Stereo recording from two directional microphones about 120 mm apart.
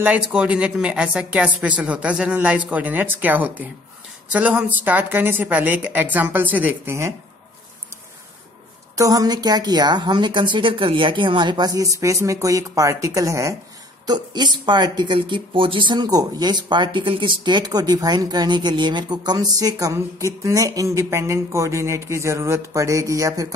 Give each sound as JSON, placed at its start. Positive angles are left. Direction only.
{"t": 0.0, "sound": "speech", "side_deg": -10}
{"t": 8.9, "sound": "speech", "side_deg": -30}
{"t": 14.0, "sound": "speech", "side_deg": -35}